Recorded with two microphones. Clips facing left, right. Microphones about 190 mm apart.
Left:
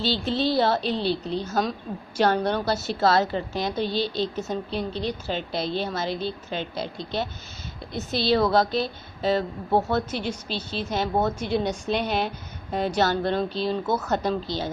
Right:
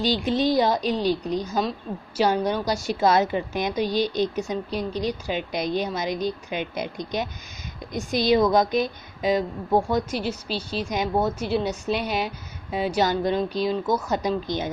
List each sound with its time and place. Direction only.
0.0 s a woman's voice: 15° right (ahead or behind)